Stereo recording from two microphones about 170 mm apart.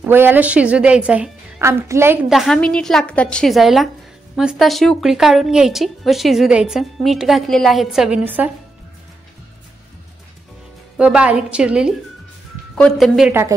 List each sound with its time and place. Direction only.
0.0 s a woman's voice: 10° right (ahead or behind)
2.2 s speech: centre (ahead or behind)
11.0 s speech: 5° right (ahead or behind)
13.3 s a woman's voice: 15° right (ahead or behind)